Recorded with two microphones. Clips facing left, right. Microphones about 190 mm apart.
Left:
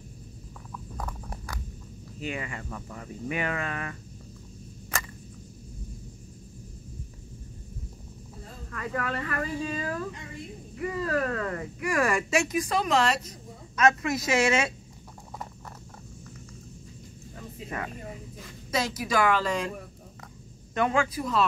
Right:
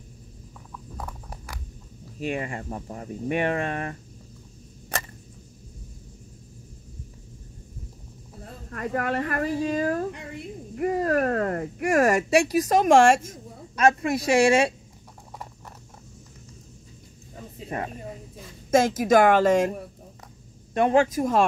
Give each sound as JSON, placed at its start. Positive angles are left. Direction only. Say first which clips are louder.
{"t": 0.9, "sound": "a sound", "louder": "even", "side_deg": -10}
{"t": 2.3, "sound": "speech", "louder": "right 5 dB", "side_deg": -40}
{"t": 8.6, "sound": "speech", "louder": "right 5 dB", "side_deg": -45}
{"t": 13.7, "sound": "speech", "louder": "right 3 dB", "side_deg": -30}
{"t": 17.6, "sound": "speech", "louder": "right 4 dB", "side_deg": -35}
{"t": 18.7, "sound": "speech", "louder": "right 10 dB", "side_deg": -50}
{"t": 20.7, "sound": "speech", "louder": "right 6 dB", "side_deg": -35}